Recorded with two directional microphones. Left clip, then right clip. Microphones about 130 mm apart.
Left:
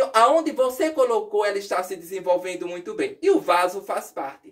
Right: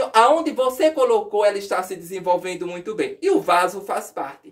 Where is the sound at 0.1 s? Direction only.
25° right (ahead or behind).